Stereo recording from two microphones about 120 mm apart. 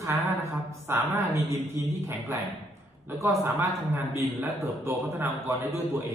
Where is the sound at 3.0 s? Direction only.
25° right (ahead or behind).